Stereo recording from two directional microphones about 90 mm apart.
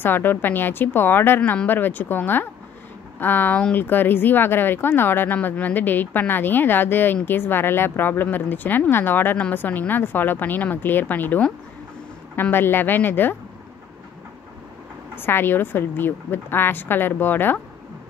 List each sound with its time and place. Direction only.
0.0 s speech: 25° left (ahead or behind)
15.1 s speech: 25° left (ahead or behind)